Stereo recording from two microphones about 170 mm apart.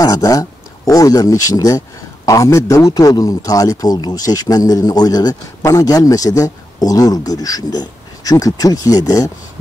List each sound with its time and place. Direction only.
0.0 s speech: 20° left (ahead or behind)